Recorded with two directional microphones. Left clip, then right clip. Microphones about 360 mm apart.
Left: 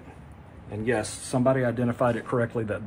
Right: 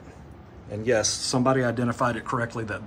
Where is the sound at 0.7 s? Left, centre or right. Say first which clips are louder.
Right 4 dB; centre.